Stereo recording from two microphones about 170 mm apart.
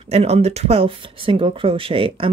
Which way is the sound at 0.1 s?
40° right (ahead or behind).